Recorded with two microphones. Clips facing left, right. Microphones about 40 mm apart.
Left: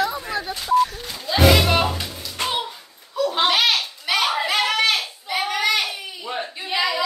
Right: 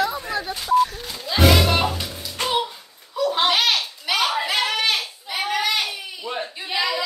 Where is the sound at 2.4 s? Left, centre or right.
Centre.